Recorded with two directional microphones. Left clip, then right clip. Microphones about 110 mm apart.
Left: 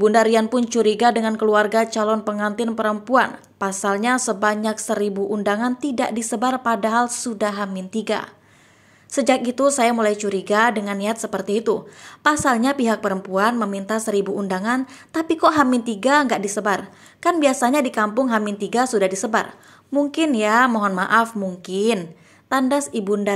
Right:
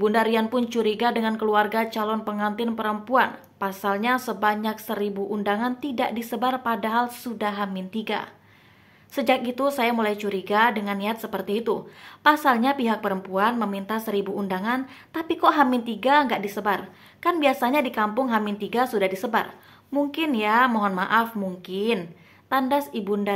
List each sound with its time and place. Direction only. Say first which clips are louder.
0.0 s a woman's voice: left 6 dB; 35° left (ahead or behind)